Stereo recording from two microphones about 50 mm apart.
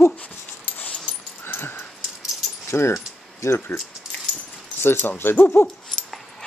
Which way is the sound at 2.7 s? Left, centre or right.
Left.